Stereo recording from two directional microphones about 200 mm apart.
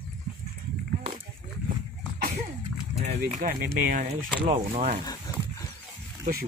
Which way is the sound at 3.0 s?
35° right (ahead or behind).